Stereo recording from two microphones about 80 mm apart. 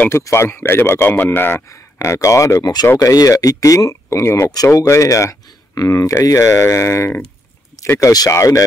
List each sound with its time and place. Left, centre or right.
0.1 s a man's voice: left